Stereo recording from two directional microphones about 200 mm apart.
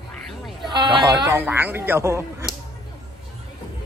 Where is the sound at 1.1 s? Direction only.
10° right (ahead or behind).